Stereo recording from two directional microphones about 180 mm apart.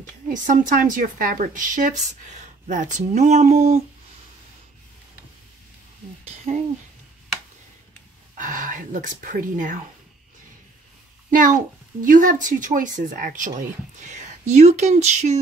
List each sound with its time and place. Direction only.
0.3 s a woman's voice: 45° right (ahead or behind)
6.5 s speech: 35° right (ahead or behind)
8.4 s a woman's voice: 45° right (ahead or behind)
11.2 s a woman's voice: 45° right (ahead or behind)